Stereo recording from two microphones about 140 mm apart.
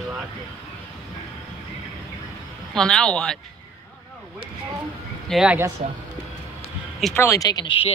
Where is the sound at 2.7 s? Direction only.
5° left (ahead or behind).